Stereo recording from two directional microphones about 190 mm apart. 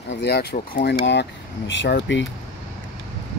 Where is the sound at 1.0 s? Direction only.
70° left (ahead or behind).